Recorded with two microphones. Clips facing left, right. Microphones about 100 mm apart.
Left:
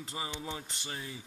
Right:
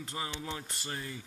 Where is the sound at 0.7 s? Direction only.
Centre (ahead or behind).